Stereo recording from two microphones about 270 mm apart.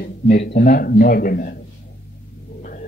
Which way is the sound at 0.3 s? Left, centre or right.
Left.